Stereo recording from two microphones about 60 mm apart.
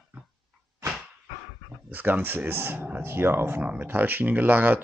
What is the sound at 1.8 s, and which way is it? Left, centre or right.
Speech, right.